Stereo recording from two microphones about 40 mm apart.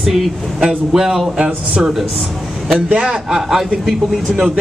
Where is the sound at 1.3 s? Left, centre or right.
Right.